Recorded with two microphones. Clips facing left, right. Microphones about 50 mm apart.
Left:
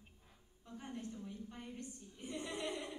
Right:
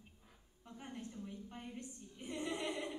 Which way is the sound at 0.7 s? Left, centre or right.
Centre.